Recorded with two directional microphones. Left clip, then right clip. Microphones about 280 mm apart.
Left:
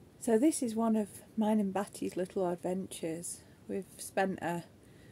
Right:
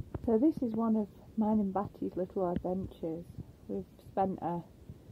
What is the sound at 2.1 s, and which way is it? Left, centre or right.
Speech, left.